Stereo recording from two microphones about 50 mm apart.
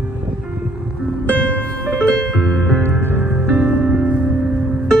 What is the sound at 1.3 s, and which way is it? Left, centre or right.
Music, left.